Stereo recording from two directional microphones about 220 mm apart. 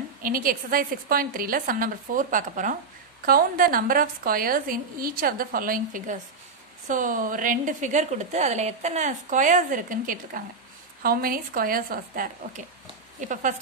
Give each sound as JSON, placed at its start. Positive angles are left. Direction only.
{"t": 0.2, "sound": "a woman's voice", "side_deg": -40}